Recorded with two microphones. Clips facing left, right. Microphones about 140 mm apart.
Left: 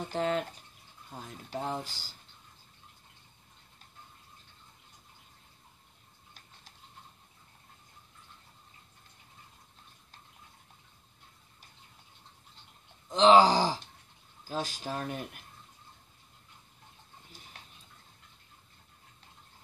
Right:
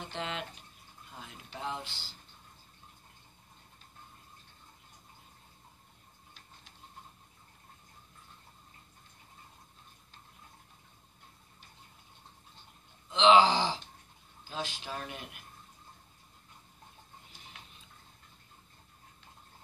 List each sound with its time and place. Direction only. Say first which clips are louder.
0.0 s speech: left 8 dB; 40° left (ahead or behind)
13.1 s speech: left 2 dB; 40° left (ahead or behind)